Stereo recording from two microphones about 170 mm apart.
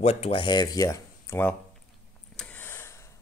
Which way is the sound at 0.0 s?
35° left (ahead or behind).